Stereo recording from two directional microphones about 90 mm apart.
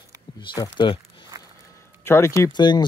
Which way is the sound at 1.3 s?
45° right (ahead or behind).